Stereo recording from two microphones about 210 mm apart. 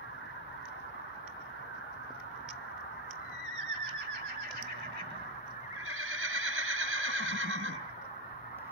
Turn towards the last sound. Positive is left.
turn(degrees=-70)  # may be behind; listen again after turning